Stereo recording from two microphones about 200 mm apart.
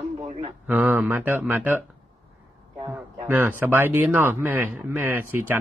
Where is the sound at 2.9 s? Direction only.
10° right (ahead or behind).